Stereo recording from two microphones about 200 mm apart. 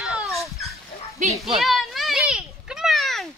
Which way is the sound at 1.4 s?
Centre (ahead or behind).